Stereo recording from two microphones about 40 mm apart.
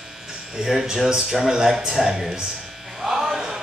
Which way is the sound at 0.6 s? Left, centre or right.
Centre.